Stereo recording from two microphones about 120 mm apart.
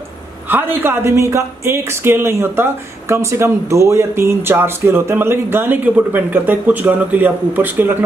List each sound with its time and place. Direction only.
0.5 s speech: 15° right (ahead or behind)